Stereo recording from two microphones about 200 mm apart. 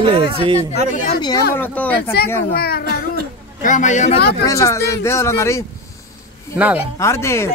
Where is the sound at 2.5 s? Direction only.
50° left (ahead or behind).